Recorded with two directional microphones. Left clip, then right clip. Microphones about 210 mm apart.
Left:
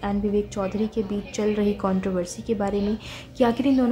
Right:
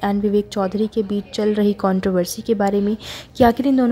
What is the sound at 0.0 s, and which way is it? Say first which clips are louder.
A woman's voice: right 6 dB; 30° right (ahead or behind).